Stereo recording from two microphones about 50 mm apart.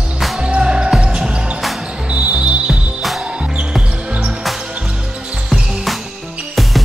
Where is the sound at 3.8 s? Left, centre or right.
Right.